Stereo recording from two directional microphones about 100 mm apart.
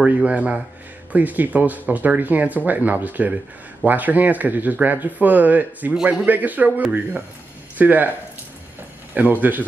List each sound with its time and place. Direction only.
0.0 s speech: 10° right (ahead or behind)
7.7 s speech: 15° right (ahead or behind)
9.1 s speech: 15° right (ahead or behind)